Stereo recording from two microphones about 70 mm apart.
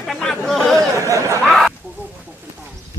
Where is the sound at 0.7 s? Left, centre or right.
Right.